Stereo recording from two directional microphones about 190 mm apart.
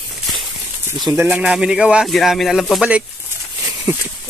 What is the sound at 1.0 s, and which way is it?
Speech, 15° right (ahead or behind).